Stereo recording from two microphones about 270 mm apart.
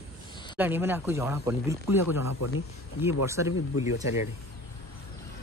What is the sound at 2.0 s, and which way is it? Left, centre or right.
Speech, left.